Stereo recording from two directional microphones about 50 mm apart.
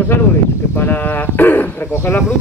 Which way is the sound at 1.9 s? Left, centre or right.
Left.